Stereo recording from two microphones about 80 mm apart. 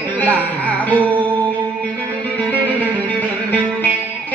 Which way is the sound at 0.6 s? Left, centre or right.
Centre.